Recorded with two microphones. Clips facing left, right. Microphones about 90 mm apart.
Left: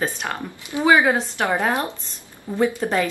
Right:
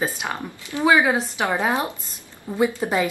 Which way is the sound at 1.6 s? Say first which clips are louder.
Even; 15° right (ahead or behind).